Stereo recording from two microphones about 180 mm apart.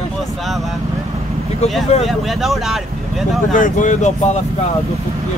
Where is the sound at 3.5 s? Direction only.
45° left (ahead or behind).